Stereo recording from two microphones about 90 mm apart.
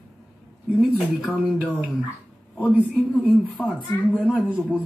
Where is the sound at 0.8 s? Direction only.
Centre (ahead or behind).